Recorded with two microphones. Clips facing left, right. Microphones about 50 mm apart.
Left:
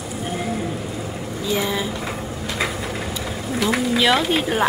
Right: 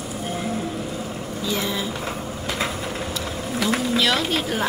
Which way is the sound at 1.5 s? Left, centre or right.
Centre.